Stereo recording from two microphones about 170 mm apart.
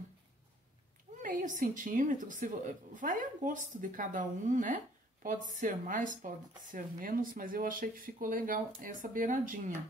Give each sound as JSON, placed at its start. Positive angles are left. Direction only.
{"t": 1.2, "sound": "speech", "side_deg": -50}